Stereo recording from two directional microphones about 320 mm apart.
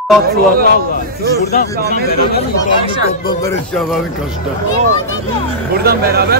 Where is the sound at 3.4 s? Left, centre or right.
Centre.